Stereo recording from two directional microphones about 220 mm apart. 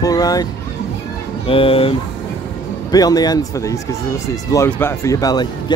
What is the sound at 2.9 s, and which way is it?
Speech, 15° left (ahead or behind).